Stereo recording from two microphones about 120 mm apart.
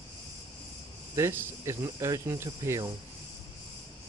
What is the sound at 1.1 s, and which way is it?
Speech, 20° right (ahead or behind).